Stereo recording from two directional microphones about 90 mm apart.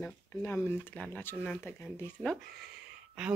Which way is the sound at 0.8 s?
15° left (ahead or behind).